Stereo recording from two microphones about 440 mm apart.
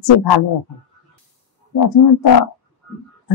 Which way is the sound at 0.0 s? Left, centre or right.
Left.